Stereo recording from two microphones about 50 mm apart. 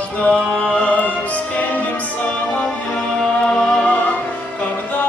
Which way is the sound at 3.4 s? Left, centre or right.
Centre.